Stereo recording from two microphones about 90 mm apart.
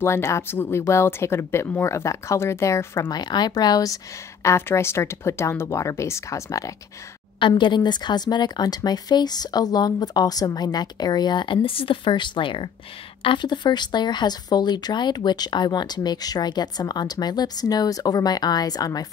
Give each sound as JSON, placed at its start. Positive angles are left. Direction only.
{"t": 0.0, "sound": "speech", "side_deg": 30}
{"t": 3.1, "sound": "a woman's voice", "side_deg": 50}
{"t": 7.3, "sound": "speech", "side_deg": 65}